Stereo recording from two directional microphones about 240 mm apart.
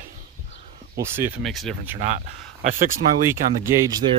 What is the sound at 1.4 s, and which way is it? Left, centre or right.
Speech, centre.